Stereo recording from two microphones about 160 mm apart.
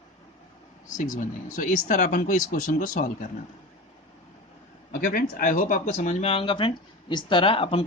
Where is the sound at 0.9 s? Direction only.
55° left (ahead or behind).